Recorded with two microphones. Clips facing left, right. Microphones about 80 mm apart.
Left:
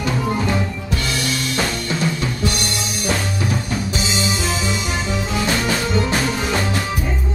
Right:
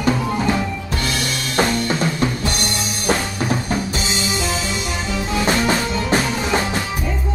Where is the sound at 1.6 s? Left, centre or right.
Right.